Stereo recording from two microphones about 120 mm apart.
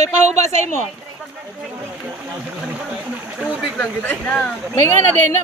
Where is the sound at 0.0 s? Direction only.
70° right (ahead or behind).